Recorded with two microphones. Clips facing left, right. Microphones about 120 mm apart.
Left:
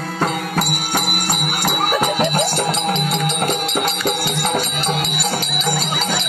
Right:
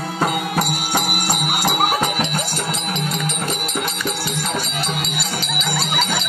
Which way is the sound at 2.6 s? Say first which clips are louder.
Left 5 dB; 70° left (ahead or behind).